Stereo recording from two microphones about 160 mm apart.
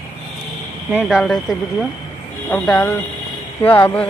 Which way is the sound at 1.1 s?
Centre (ahead or behind).